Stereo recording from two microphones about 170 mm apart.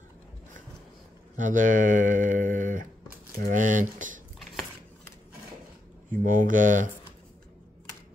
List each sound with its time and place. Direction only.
1.3 s speech: 50° right (ahead or behind)
6.2 s speech: 50° right (ahead or behind)